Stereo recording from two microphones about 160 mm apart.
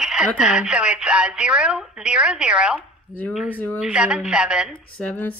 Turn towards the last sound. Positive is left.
turn(degrees=10)  # may be behind; listen again after turning